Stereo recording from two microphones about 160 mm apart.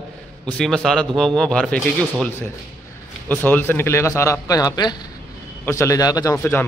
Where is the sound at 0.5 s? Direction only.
5° left (ahead or behind).